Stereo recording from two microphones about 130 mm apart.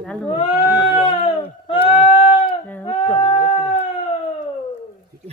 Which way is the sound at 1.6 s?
40° left (ahead or behind).